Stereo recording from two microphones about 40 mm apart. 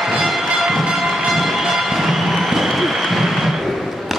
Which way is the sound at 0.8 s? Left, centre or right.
Centre.